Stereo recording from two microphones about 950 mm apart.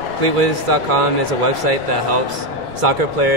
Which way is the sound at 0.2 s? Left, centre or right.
Right.